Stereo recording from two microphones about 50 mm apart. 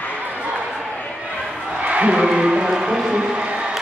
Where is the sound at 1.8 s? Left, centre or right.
Right.